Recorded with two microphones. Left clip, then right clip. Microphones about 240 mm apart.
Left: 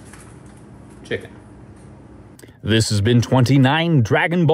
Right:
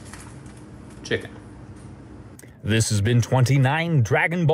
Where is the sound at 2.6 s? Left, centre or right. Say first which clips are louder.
Left 5 dB; left.